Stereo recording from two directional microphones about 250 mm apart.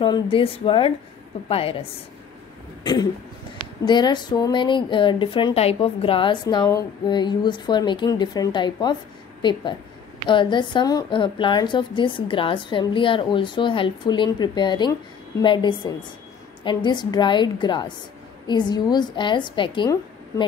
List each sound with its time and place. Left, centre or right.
0.0 s a woman's voice: left
2.8 s cough: centre
3.8 s a woman's voice: centre